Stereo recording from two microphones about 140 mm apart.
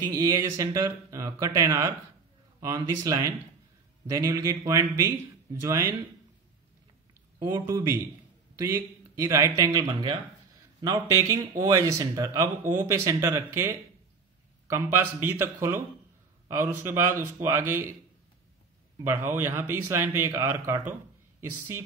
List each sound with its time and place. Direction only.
0.0 s speech: 25° right (ahead or behind)
7.3 s speech: 20° right (ahead or behind)
9.1 s a man's voice: 20° right (ahead or behind)
18.9 s a man's voice: 15° right (ahead or behind)